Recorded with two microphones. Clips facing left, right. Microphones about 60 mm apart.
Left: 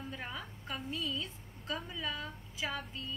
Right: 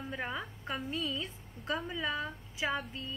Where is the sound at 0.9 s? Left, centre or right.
Right.